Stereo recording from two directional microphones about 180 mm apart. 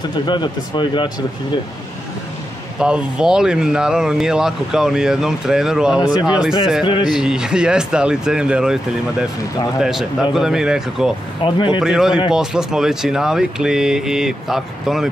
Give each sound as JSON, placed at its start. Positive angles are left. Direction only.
{"t": 0.3, "sound": "speech", "side_deg": 25}
{"t": 2.8, "sound": "speech", "side_deg": -5}
{"t": 9.8, "sound": "speech", "side_deg": -5}
{"t": 11.4, "sound": "speech", "side_deg": 25}
{"t": 11.8, "sound": "speech", "side_deg": -5}